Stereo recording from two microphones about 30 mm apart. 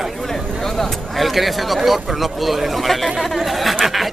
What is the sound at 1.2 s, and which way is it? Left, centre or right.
Speech, centre.